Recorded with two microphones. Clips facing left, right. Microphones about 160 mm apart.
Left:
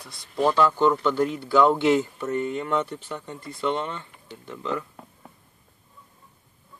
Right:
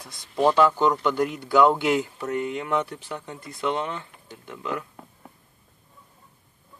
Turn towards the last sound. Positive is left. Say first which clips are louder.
# left 1 dB
turn(degrees=-10)  # may be behind; listen again after turning